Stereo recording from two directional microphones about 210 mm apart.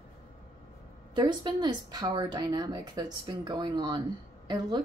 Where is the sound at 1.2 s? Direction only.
20° right (ahead or behind).